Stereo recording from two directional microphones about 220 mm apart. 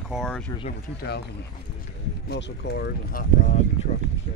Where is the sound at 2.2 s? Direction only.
50° left (ahead or behind).